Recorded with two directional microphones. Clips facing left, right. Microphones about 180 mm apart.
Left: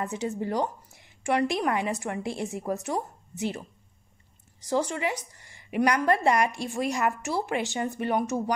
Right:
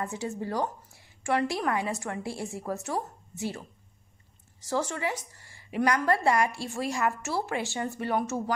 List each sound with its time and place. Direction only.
0.0 s a woman's voice: 20° left (ahead or behind)